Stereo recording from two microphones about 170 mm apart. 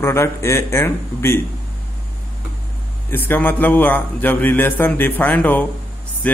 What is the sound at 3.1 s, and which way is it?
Speech, 10° left (ahead or behind).